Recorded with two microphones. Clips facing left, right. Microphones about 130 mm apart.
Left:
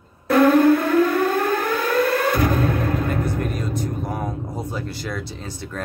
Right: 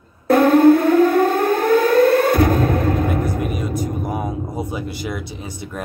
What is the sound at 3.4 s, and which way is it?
Vehicle, 10° right (ahead or behind).